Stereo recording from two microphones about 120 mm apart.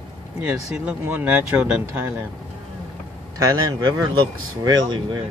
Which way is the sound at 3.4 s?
35° right (ahead or behind).